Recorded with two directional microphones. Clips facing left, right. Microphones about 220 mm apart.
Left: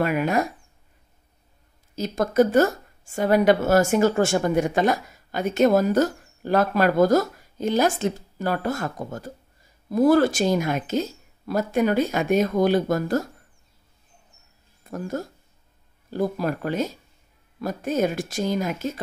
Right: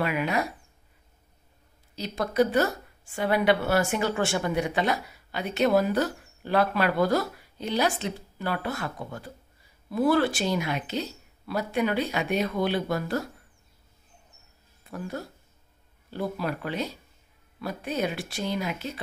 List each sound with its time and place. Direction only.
0.0 s a woman's voice: 45° left (ahead or behind)
2.0 s a woman's voice: 45° left (ahead or behind)
14.9 s a woman's voice: 45° left (ahead or behind)